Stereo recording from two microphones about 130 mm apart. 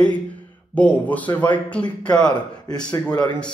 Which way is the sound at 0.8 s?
10° left (ahead or behind).